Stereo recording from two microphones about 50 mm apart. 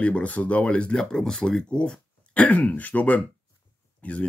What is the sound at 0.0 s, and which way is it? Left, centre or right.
Speech, left.